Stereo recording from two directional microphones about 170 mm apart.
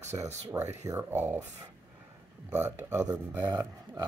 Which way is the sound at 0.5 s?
15° right (ahead or behind).